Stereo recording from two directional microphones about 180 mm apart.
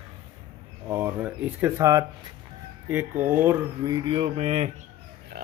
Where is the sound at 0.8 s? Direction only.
10° right (ahead or behind).